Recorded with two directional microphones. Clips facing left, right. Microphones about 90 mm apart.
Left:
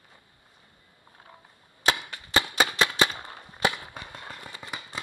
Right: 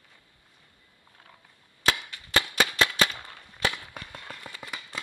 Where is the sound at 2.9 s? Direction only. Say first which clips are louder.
Left 2 dB; 25° left (ahead or behind).